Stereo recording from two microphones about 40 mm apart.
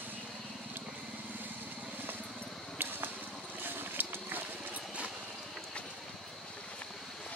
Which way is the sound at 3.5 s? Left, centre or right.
Right.